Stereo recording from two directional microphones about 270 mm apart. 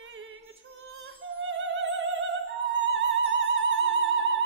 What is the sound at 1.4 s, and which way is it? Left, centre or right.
Opera, right.